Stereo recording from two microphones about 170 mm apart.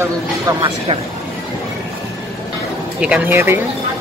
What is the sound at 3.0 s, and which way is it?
Speech, 10° right (ahead or behind).